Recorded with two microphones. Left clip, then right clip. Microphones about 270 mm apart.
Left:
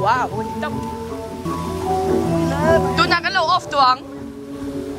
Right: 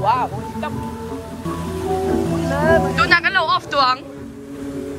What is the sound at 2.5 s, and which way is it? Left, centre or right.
Speech, centre.